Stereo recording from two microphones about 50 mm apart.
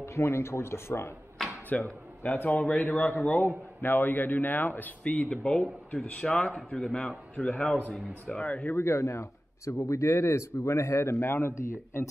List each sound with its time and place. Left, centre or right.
0.0 s speech: left
1.7 s a man's voice: left
5.0 s speech: left
5.9 s speech: centre
8.7 s speech: left
9.8 s a man's voice: left